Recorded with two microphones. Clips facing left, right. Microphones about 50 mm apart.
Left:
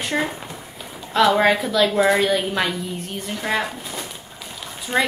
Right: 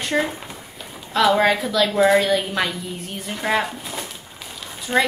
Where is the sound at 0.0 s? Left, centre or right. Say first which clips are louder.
Right 1 dB; centre.